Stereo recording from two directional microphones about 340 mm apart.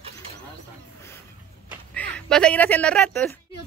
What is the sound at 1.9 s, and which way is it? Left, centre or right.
Speech, centre.